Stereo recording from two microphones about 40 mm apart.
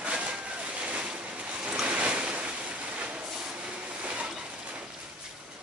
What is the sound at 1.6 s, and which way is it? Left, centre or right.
Waves, right.